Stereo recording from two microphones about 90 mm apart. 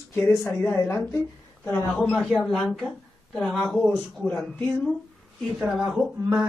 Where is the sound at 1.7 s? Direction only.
15° left (ahead or behind).